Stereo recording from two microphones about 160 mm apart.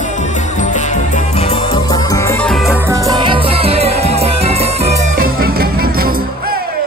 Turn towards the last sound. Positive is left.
turn(degrees=-70)  # may be behind; listen again after turning